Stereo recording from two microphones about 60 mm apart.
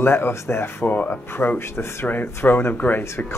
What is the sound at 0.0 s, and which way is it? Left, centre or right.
Speech, left.